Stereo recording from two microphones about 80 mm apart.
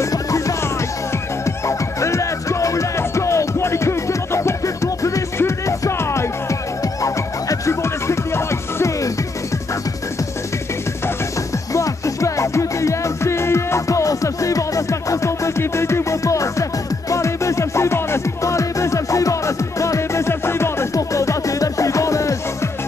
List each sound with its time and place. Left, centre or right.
0.0 s music: left
11.7 s music: left